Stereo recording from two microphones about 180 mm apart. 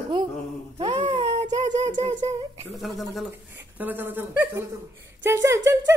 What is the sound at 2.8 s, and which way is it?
Speech, centre (ahead or behind).